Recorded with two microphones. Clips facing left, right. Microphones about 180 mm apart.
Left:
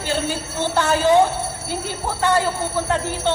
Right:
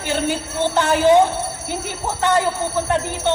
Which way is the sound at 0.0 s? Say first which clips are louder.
Right 2 dB; 15° right (ahead or behind).